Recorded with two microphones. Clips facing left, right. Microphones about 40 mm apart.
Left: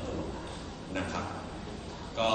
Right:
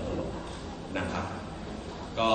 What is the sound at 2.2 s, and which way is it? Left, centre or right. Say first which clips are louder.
Speech: right 3 dB; centre.